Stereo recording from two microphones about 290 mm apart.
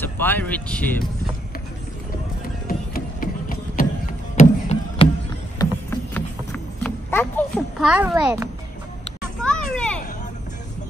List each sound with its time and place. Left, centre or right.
0.0 s speech: centre
2.9 s a sound: left
5.6 s clip-clop: centre
9.4 s children playing: centre